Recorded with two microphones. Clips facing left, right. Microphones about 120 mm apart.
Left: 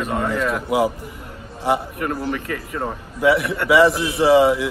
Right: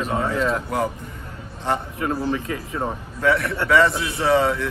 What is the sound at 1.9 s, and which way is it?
Speech, 20° right (ahead or behind).